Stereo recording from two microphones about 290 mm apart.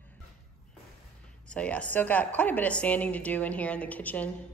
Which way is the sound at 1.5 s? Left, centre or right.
Centre.